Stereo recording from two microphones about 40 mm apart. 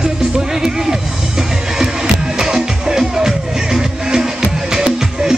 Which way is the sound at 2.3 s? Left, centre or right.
Centre.